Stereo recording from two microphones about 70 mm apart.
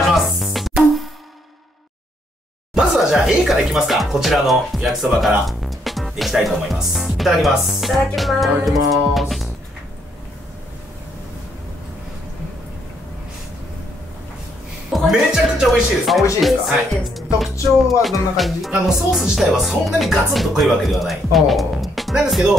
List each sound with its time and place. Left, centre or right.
0.1 s music: centre
2.7 s speech: centre
14.9 s a sound: centre
16.3 s speech: centre